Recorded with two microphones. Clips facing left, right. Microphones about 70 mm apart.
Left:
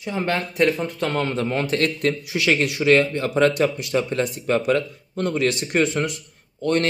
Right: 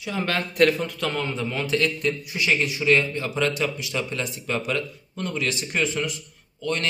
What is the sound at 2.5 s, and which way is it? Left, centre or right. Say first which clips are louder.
A man's voice: left 4 dB; left.